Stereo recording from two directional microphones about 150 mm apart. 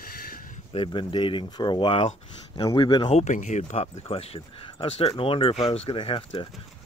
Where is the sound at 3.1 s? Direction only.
55° left (ahead or behind); by 6.5 s 35° left (ahead or behind).